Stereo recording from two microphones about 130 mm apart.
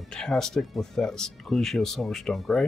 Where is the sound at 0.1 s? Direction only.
5° left (ahead or behind).